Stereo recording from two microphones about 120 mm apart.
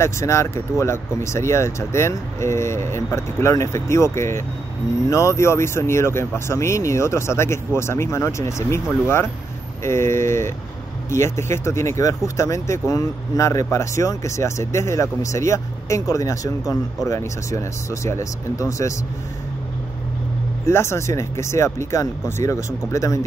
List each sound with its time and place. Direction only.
0.0 s speech: 25° left (ahead or behind)
20.6 s speech: 25° left (ahead or behind)